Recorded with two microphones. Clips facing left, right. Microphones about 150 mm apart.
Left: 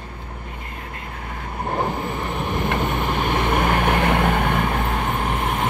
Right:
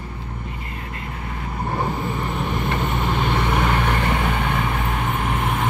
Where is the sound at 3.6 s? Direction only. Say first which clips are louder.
Left 2 dB; 55° left (ahead or behind).